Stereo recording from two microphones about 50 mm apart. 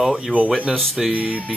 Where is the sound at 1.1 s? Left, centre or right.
Right.